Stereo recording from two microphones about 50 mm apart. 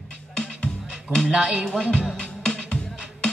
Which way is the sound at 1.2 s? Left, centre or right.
Right.